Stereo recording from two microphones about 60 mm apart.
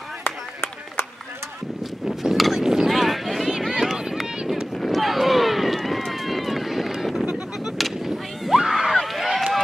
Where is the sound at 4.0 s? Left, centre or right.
Centre.